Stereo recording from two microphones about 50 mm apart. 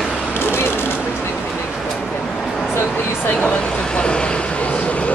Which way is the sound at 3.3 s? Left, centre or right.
Centre.